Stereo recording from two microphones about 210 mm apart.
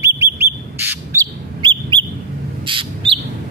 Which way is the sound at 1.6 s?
20° right (ahead or behind).